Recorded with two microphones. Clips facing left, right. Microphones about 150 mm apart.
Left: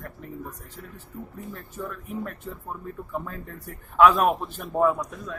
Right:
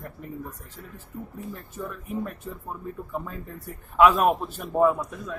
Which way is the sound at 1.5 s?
5° right (ahead or behind).